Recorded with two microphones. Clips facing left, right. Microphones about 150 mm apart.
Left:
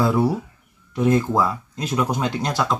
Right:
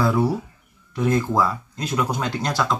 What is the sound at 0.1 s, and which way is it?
Speech, 10° left (ahead or behind).